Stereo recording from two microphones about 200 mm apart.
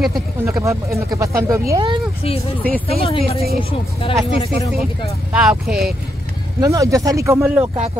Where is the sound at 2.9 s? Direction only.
30° left (ahead or behind).